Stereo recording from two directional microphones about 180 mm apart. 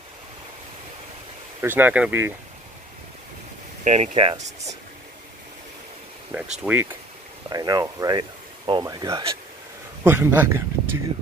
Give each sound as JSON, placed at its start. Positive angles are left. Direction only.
{"t": 1.6, "sound": "speech", "side_deg": -10}
{"t": 3.8, "sound": "speech", "side_deg": -40}
{"t": 6.6, "sound": "speech", "side_deg": -10}
{"t": 7.4, "sound": "speech", "side_deg": -20}